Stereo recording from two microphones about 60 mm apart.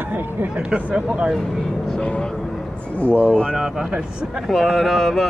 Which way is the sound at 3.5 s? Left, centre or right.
Centre.